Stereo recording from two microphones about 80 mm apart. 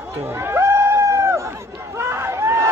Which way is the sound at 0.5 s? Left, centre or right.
Right.